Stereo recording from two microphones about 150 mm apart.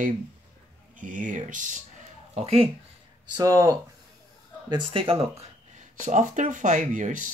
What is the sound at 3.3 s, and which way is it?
Speech, 20° right (ahead or behind).